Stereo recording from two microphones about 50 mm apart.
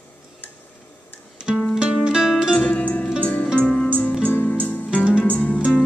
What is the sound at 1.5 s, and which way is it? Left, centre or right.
Music, centre.